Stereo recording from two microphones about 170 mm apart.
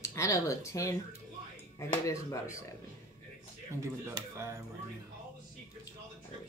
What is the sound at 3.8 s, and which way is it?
Speech, 15° right (ahead or behind).